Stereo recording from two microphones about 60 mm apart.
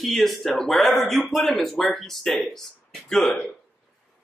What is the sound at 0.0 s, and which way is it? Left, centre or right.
Speech, centre.